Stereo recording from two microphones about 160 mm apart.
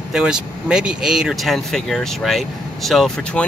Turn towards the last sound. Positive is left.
turn(degrees=0)  # may be behind; listen again after turning